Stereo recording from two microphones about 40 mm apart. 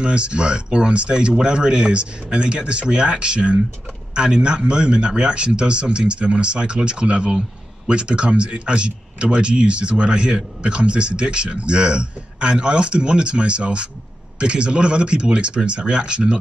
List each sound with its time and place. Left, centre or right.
0.0 s speech: right